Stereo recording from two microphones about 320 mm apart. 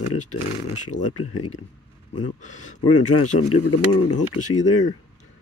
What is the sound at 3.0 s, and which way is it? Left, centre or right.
Speech, left.